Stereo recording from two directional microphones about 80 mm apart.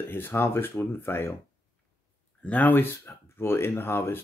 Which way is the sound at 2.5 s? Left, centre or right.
Left.